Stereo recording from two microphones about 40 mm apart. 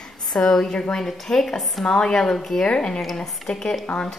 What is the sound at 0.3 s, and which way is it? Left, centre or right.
Speech, centre.